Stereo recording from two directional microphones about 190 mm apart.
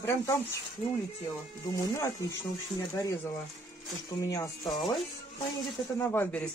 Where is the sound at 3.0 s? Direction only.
15° left (ahead or behind).